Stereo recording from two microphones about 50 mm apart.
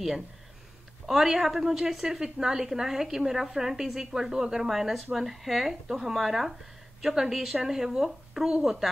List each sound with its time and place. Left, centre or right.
1.0 s a woman's voice: centre